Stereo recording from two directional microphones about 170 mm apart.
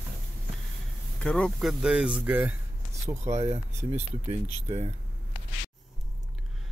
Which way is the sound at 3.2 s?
40° right (ahead or behind).